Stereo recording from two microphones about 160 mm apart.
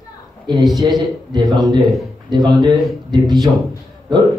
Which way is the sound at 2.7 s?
Centre (ahead or behind).